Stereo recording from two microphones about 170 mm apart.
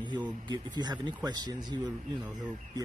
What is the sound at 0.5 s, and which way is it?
Speech, 25° right (ahead or behind).